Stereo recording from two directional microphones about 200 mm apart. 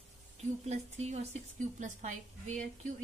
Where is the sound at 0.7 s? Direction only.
35° right (ahead or behind).